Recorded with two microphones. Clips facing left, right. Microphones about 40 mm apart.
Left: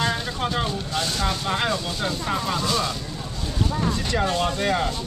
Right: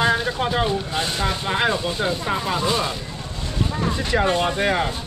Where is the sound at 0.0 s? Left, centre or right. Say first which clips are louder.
Right 5 dB; centre.